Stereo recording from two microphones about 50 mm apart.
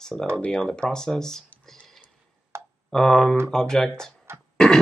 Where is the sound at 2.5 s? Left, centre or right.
Right.